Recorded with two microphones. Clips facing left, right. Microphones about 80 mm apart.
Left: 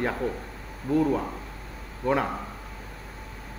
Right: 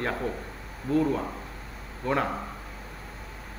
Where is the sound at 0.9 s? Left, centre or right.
Left.